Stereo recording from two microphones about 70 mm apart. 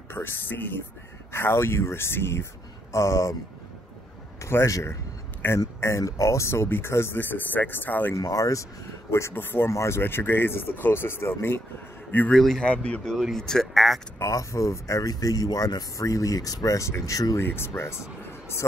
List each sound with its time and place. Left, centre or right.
0.1 s speech: left
4.4 s speech: left
5.4 s speech: left
5.8 s speech: left
8.2 s speech: left
9.1 s speech: left
9.7 s a man's voice: left
12.4 s speech: centre
14.1 s speech: left
17.4 s speech: left